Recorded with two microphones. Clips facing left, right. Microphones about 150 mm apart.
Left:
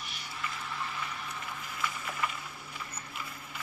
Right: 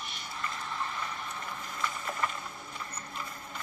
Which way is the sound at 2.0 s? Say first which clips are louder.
Right 2 dB; 35° right (ahead or behind).